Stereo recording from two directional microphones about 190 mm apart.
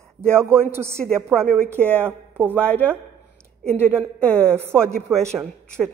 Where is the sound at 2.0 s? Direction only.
10° right (ahead or behind).